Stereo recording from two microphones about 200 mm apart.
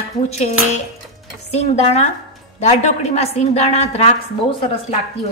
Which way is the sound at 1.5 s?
35° left (ahead or behind).